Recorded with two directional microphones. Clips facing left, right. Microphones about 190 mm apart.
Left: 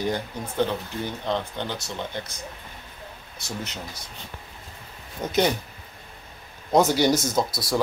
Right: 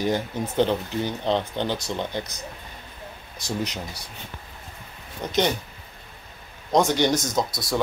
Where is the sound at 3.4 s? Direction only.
15° right (ahead or behind).